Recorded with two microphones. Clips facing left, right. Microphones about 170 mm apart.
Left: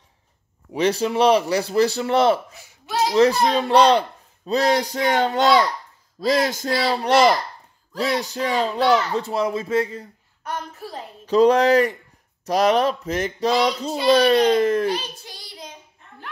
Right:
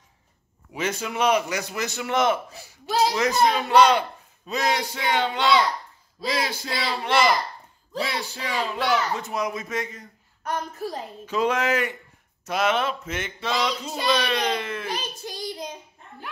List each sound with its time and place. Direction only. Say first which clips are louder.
0.7 s speech: left 7 dB; 35° left (ahead or behind)
2.5 s a sound: right 1 dB; 35° right (ahead or behind)
3.2 s a man's voice: left 5 dB; 30° left (ahead or behind)
11.2 s speech: left 9 dB; 35° left (ahead or behind)